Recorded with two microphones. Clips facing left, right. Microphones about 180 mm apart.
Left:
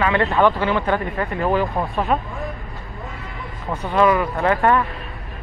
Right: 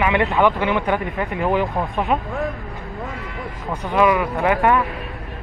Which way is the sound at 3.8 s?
10° right (ahead or behind).